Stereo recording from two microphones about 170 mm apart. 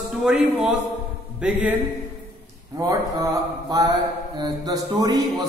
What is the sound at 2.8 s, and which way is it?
A man's voice, 20° right (ahead or behind).